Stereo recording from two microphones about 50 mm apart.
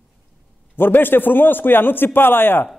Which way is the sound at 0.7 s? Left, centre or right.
Left.